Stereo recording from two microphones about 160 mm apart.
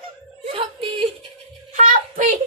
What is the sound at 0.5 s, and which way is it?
Music, 35° right (ahead or behind).